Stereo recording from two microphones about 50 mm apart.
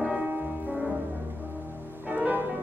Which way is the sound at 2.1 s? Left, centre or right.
Right.